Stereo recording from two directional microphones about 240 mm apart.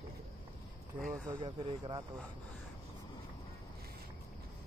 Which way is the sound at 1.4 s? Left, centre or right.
Centre.